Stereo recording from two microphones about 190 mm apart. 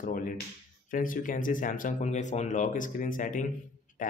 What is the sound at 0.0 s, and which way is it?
Speech, 45° left (ahead or behind).